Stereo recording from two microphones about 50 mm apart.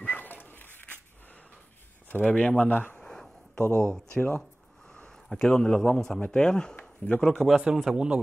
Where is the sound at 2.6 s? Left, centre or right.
Left.